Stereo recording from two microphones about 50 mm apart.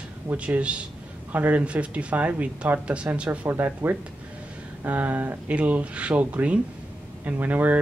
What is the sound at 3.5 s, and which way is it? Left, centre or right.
A man's voice, right.